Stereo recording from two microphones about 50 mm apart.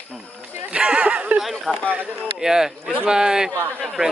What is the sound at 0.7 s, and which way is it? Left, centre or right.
Speech, right.